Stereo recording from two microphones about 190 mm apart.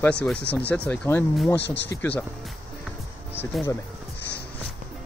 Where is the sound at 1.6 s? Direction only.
65° left (ahead or behind).